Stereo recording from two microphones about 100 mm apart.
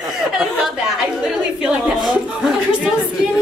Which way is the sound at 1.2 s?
5° right (ahead or behind).